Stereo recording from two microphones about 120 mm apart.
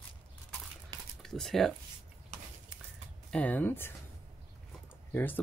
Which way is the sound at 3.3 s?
10° left (ahead or behind).